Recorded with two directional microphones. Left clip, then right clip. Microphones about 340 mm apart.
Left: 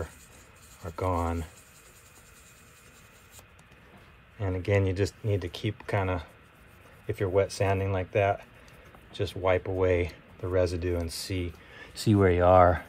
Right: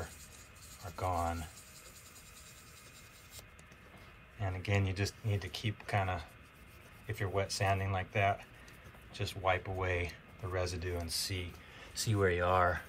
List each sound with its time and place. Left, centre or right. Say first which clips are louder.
4.4 s speech: left 9 dB; left